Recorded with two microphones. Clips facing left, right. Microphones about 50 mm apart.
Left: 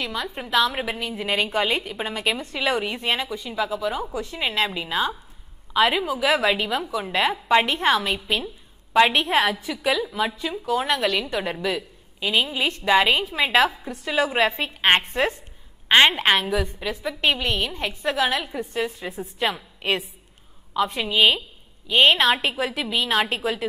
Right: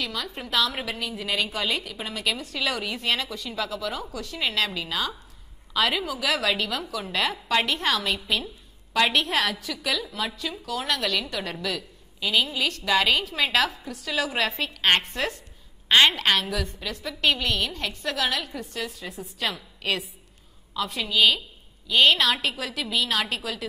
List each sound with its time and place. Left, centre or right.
0.0 s a woman's voice: left